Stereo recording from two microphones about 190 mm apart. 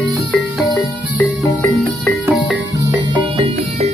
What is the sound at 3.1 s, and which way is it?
Music, 25° right (ahead or behind).